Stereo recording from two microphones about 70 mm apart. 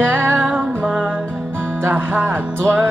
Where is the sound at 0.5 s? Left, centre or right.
Right.